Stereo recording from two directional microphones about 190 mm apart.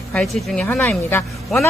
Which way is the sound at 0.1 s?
5° left (ahead or behind).